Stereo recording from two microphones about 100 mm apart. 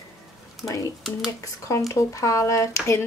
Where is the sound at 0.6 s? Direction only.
30° left (ahead or behind).